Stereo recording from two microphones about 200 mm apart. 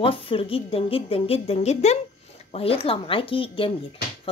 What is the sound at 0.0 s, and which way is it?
Speech, 25° left (ahead or behind).